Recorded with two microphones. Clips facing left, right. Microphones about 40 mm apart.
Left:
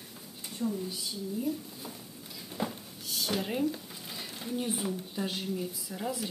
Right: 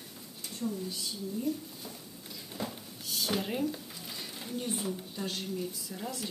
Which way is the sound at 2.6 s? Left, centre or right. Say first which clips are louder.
Left 4 dB; centre.